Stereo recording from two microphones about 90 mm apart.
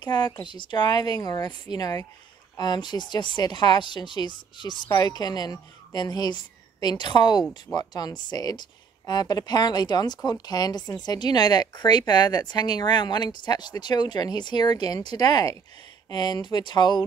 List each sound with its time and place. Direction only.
0.0 s speech: 55° left (ahead or behind)